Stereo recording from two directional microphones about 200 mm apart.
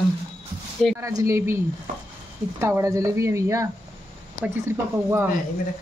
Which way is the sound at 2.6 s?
15° right (ahead or behind).